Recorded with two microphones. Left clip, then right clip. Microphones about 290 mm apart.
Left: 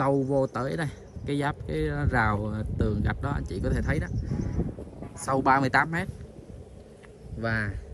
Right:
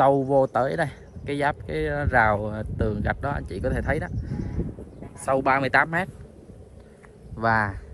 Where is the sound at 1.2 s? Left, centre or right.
Centre.